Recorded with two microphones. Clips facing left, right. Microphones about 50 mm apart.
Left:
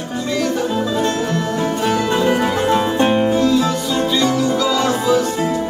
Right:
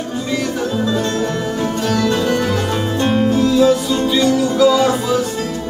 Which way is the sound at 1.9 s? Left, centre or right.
Centre.